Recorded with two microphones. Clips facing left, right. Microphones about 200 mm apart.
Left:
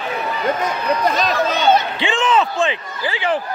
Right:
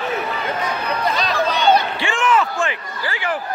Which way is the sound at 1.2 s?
45° left (ahead or behind).